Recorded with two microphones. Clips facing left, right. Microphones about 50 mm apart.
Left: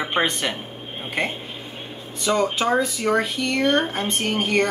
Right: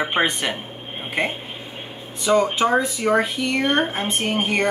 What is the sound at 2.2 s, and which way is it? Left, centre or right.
Speech, centre.